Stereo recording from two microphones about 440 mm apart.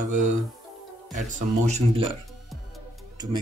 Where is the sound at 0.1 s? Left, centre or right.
Centre.